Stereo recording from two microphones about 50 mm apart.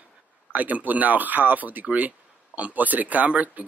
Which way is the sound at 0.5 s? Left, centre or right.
Right.